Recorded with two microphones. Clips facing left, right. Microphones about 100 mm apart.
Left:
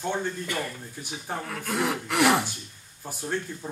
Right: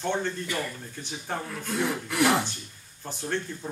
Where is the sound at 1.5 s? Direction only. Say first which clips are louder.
Left 2 dB; 65° left (ahead or behind).